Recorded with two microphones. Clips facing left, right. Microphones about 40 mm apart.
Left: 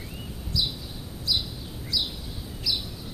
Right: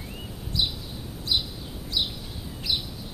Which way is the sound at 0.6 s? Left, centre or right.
Right.